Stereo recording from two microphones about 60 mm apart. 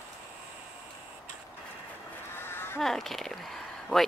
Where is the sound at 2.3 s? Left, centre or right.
Left.